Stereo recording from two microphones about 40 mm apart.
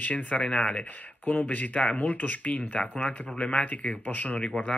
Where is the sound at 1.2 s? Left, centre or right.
Left.